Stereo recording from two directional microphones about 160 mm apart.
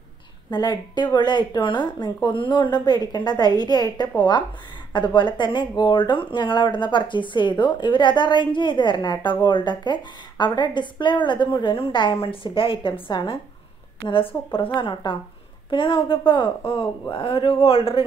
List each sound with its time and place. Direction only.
0.5 s a woman's voice: 25° left (ahead or behind)